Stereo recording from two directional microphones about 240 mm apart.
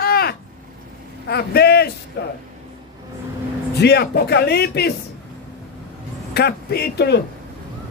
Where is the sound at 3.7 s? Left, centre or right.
Left.